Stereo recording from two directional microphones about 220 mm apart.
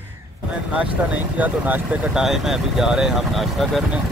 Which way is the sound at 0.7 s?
5° right (ahead or behind).